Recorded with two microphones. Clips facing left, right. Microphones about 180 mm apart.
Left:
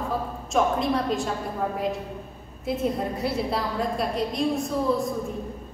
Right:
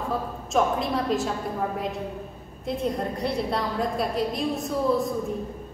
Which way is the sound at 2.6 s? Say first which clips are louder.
Left 1 dB; 5° left (ahead or behind).